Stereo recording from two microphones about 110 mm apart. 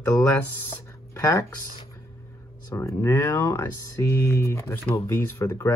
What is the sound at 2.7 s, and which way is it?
Speech, 25° left (ahead or behind).